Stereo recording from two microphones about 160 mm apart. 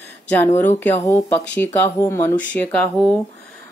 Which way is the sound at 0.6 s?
15° left (ahead or behind).